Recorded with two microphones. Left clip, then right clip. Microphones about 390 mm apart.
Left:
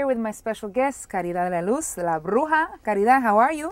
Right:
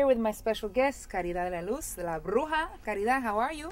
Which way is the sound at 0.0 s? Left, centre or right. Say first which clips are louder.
Left 1 dB; left.